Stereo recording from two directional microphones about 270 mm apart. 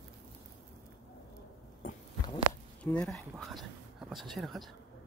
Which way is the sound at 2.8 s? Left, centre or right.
Centre.